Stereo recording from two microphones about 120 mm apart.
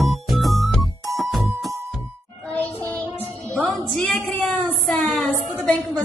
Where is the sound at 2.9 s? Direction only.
10° left (ahead or behind).